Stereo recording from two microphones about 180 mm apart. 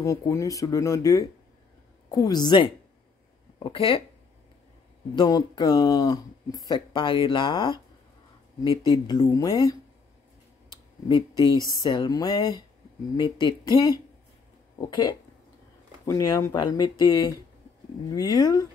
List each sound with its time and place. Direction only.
0.0 s speech: 15° left (ahead or behind)
5.1 s speech: 25° left (ahead or behind)
9.0 s speech: 20° left (ahead or behind)
10.7 s a sound: 20° right (ahead or behind)
11.6 s speech: 25° left (ahead or behind)